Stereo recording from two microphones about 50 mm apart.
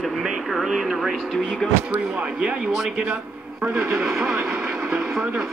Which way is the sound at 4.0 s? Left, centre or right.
Centre.